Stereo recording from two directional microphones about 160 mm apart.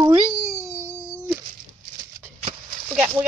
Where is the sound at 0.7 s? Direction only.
20° right (ahead or behind).